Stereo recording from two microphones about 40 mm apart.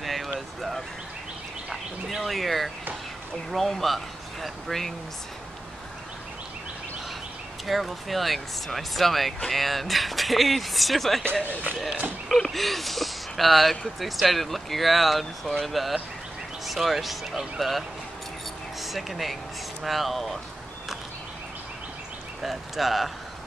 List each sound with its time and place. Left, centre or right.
0.0 s a sound: centre
1.7 s bird: centre
2.2 s speech: centre
7.6 s speech: centre
11.4 s speech: right
12.4 s speech: centre
22.4 s speech: centre